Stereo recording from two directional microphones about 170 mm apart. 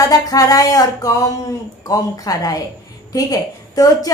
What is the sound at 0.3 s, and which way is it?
A woman's voice, 20° left (ahead or behind).